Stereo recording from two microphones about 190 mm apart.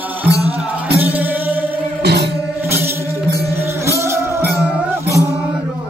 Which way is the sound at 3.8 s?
15° right (ahead or behind).